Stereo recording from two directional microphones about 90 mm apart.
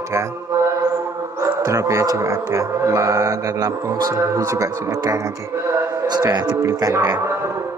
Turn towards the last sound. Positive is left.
turn(degrees=-45)  # may be behind; listen again after turning